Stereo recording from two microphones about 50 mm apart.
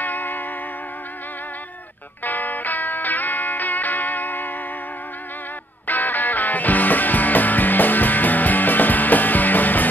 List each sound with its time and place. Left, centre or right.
0.0 s music: left
2.2 s music: left
5.9 s music: left